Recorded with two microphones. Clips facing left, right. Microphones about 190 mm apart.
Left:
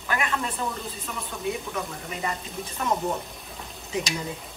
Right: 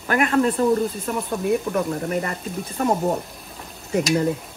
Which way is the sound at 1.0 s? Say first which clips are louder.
Right 7 dB; 55° right (ahead or behind).